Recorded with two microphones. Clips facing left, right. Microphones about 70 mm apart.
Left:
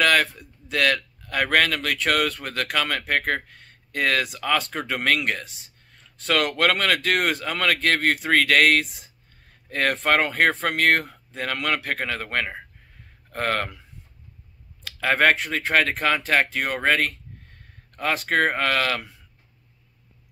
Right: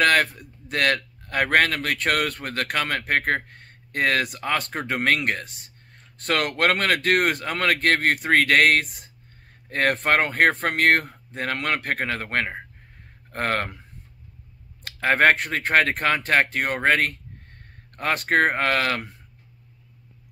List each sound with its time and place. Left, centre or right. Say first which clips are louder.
0.0 s speech: right 1 dB; right
14.8 s a sound: right 1 dB; right
15.5 s speech: right 1 dB; right